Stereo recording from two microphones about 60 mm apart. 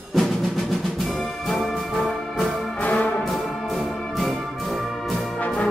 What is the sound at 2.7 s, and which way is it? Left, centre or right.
Brass instrument, left.